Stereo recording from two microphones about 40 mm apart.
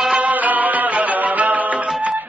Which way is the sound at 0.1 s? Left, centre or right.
Right.